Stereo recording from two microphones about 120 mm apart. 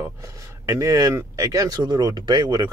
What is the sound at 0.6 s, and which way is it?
Speech, 30° right (ahead or behind).